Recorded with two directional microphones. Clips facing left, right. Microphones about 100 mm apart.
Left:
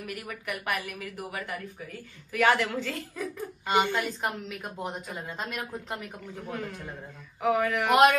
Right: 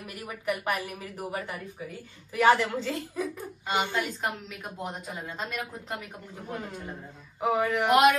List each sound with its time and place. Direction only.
0.0 s speech: 25° right (ahead or behind)
3.6 s a woman's voice: centre (ahead or behind)
7.3 s speech: 25° right (ahead or behind)
7.8 s a woman's voice: centre (ahead or behind)